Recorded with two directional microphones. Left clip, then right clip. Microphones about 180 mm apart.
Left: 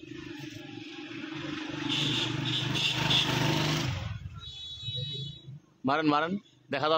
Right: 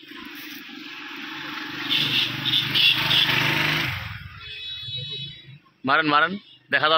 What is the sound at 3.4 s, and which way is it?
Jackhammer, 20° left (ahead or behind).